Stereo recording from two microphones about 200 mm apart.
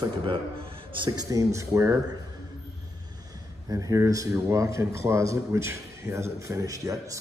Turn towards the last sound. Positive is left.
turn(degrees=-15)  # may be behind; listen again after turning